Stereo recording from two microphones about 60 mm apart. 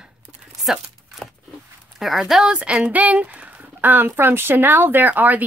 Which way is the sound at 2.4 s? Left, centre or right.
Centre.